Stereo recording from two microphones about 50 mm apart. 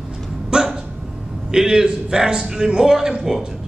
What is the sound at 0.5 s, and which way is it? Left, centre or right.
Dog, centre.